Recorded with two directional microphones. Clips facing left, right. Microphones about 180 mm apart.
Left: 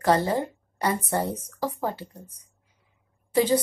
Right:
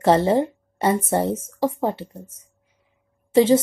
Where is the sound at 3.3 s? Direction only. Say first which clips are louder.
Right 7 dB; 25° right (ahead or behind).